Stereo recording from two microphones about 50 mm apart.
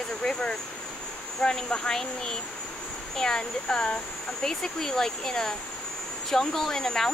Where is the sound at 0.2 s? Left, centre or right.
Centre.